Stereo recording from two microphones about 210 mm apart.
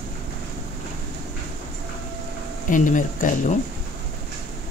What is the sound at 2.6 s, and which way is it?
Speech, 40° left (ahead or behind).